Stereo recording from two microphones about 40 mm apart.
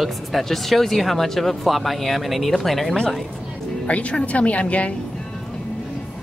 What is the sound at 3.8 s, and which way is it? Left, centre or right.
Speech, left.